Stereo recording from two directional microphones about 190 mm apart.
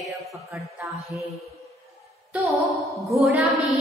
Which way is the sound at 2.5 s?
Centre (ahead or behind).